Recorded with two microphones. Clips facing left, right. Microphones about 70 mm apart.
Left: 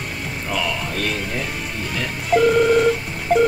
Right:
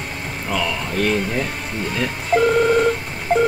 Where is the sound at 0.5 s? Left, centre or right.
Centre.